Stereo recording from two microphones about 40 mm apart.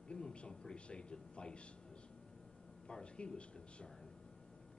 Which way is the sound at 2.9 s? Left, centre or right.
Left.